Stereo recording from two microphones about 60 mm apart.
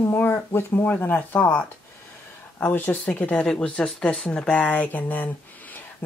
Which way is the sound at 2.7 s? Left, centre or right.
Left.